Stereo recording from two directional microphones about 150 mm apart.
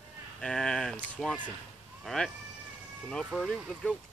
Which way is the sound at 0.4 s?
5° left (ahead or behind).